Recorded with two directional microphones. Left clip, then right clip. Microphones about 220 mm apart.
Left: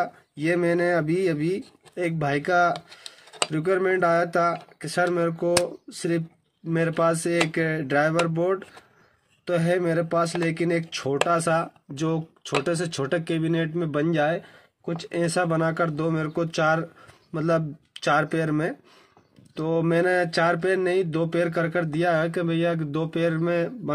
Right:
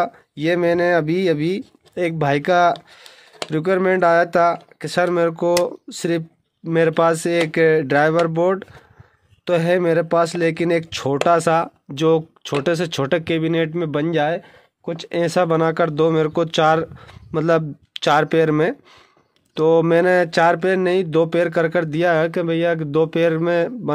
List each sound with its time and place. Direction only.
0.0 s speech: 40° right (ahead or behind)